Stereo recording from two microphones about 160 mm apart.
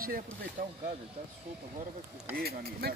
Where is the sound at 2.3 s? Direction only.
70° right (ahead or behind).